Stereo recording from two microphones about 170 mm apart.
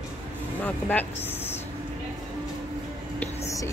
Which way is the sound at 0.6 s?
10° left (ahead or behind).